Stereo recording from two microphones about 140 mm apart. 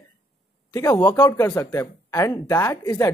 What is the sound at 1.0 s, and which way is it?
Speech, 15° left (ahead or behind).